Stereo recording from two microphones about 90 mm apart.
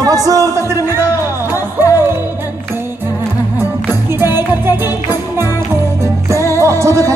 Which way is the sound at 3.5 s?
25° right (ahead or behind).